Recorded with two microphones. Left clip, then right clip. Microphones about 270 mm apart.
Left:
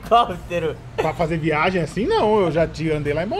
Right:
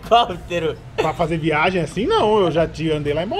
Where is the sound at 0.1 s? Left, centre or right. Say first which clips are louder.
Right 1 dB; centre.